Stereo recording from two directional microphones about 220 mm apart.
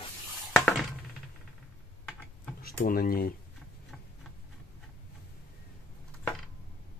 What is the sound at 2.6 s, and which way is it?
Speech, 40° left (ahead or behind).